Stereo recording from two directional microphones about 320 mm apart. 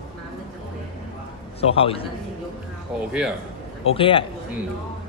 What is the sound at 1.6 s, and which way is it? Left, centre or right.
Speech, centre.